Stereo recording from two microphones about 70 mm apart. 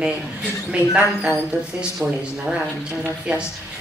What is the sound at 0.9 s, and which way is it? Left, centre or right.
A woman's voice, centre.